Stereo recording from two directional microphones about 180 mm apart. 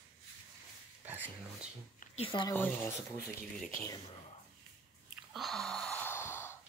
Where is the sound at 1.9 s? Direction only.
35° left (ahead or behind).